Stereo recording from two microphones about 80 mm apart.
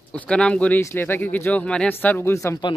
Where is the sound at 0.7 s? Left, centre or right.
Left.